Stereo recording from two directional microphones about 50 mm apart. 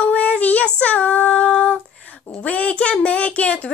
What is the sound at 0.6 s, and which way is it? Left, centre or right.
Child singing, left.